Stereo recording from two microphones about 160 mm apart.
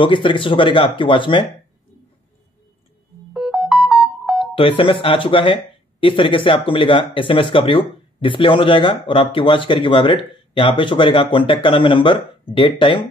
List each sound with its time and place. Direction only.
0.0 s speech: 30° left (ahead or behind)
3.3 s music: 5° right (ahead or behind)
4.6 s speech: 35° left (ahead or behind)